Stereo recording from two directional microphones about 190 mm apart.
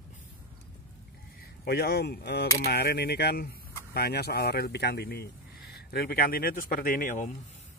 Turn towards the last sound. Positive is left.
turn(degrees=45)  # may be behind; listen again after turning